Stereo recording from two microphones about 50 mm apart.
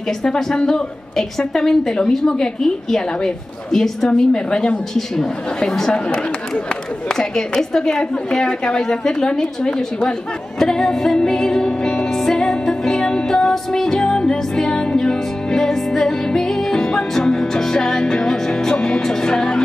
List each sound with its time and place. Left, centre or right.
0.2 s a woman's voice: centre
6.0 s chatter: centre
7.1 s a woman's voice: centre
10.6 s music: centre